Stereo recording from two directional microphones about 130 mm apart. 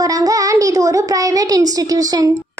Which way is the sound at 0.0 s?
25° right (ahead or behind).